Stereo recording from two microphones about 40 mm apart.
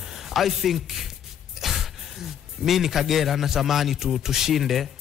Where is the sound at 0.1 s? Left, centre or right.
Centre.